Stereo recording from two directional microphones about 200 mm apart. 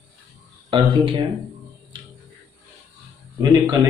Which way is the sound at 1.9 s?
25° right (ahead or behind).